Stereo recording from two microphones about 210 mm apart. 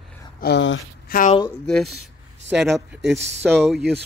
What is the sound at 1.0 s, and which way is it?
Speech, 40° left (ahead or behind).